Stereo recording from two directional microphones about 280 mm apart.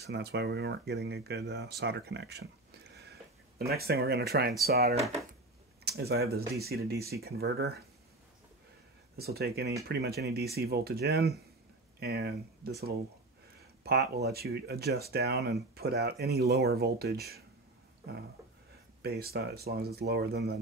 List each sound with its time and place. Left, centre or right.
0.0 s speech: right
9.1 s speech: right
19.0 s speech: right